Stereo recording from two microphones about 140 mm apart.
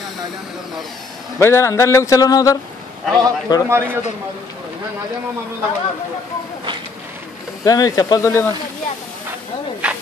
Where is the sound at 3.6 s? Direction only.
15° right (ahead or behind).